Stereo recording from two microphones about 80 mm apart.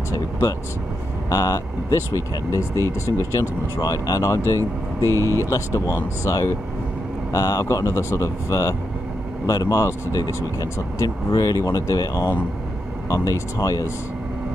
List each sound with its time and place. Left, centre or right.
0.1 s speech: left
5.2 s speech: right
5.5 s speech: left